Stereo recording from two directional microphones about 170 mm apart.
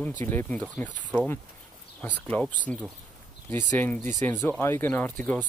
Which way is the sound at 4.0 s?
45° right (ahead or behind).